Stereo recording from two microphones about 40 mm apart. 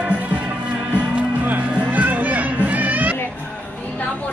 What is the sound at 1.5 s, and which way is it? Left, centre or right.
Music, right.